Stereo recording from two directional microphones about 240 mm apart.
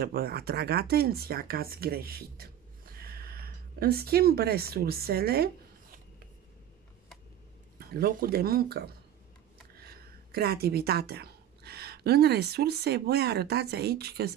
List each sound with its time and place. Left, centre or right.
0.0 s speech: right
7.8 s a woman's voice: right